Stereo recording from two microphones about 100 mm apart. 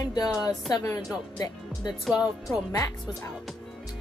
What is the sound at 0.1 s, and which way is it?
Speech, 40° left (ahead or behind).